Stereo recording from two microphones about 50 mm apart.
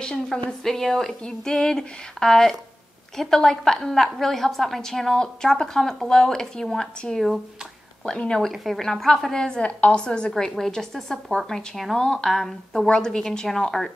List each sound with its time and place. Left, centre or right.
0.0 s a woman's voice: centre
8.5 s a woman's voice: centre
10.3 s a woman's voice: centre